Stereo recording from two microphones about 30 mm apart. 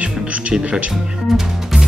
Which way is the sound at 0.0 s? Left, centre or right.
Right.